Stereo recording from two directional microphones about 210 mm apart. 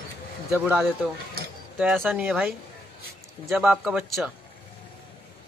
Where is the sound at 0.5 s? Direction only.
10° right (ahead or behind).